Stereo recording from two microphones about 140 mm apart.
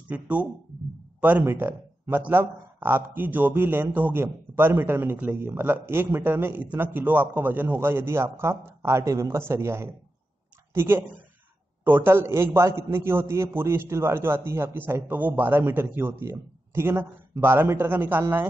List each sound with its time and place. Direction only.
0.1 s speech: 10° right (ahead or behind)